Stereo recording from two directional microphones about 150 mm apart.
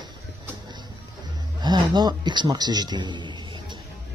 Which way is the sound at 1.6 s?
30° right (ahead or behind).